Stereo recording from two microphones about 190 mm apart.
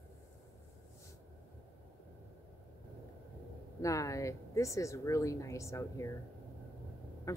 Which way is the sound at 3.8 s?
15° left (ahead or behind).